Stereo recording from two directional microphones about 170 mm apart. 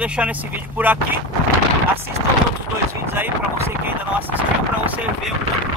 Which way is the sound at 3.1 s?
15° right (ahead or behind).